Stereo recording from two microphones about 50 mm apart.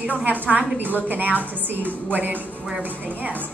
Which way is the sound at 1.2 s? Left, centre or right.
Left.